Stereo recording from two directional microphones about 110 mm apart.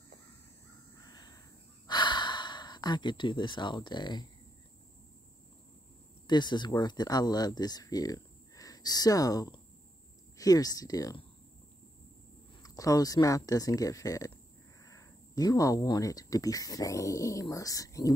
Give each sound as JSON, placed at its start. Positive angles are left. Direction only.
{"t": 1.0, "sound": "crow", "side_deg": 35}
{"t": 1.9, "sound": "gasp", "side_deg": 45}
{"t": 6.2, "sound": "speech", "side_deg": 45}
{"t": 12.6, "sound": "speech", "side_deg": 35}